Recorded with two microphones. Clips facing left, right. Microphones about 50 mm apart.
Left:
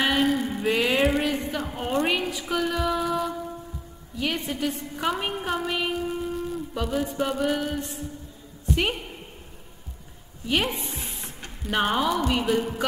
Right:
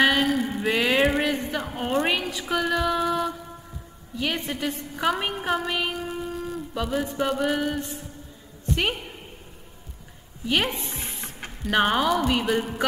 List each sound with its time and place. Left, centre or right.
0.0 s mantra: centre
1.0 s a sound: centre
1.6 s a woman's voice: centre
10.5 s speech: centre
11.7 s speech: right
12.0 s a woman's voice: centre